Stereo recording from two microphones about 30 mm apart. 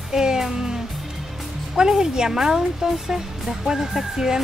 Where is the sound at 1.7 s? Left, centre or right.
Right.